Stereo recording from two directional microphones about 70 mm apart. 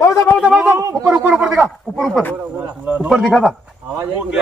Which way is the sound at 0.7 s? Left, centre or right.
Right.